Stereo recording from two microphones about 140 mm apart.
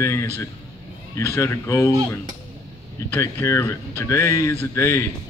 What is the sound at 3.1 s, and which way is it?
A man's voice, 20° left (ahead or behind).